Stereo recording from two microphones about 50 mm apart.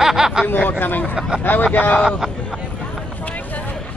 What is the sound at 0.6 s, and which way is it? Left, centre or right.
Speech, left.